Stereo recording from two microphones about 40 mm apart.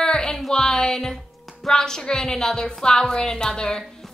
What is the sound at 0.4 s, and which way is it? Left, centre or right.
Music, centre.